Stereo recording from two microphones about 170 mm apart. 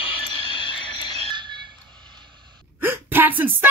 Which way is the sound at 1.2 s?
30° right (ahead or behind).